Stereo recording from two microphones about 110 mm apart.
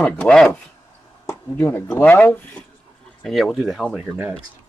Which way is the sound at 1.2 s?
25° left (ahead or behind).